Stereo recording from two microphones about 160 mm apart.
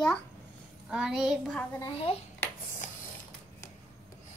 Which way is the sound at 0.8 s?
5° right (ahead or behind).